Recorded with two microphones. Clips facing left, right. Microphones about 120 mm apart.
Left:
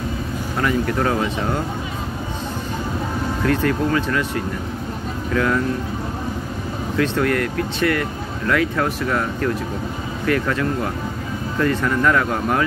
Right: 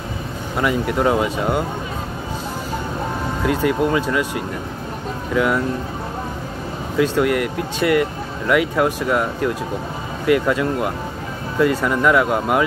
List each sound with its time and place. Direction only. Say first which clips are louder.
0.6 s speech: right 1 dB; 15° right (ahead or behind)
3.4 s speech: right 1 dB; 15° right (ahead or behind)
5.3 s speech: right 1 dB; 10° right (ahead or behind)
7.0 s speech: right 2 dB; 15° right (ahead or behind)